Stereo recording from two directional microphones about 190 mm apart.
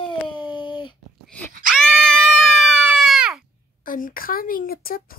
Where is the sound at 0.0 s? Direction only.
25° left (ahead or behind).